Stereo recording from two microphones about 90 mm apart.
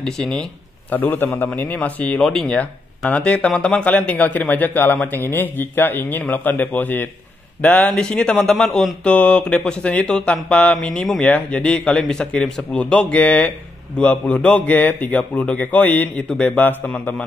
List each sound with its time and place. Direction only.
0.0 s speech: 5° left (ahead or behind)
0.9 s a man's voice: 20° left (ahead or behind)